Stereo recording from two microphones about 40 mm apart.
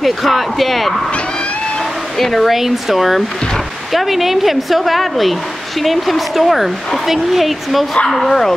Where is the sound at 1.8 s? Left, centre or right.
Centre.